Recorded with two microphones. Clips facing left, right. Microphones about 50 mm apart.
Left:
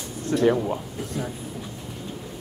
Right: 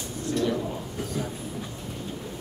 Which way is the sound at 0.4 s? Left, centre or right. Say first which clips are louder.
Left 7 dB; left.